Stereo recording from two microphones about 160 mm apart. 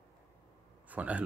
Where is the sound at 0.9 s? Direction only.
10° right (ahead or behind).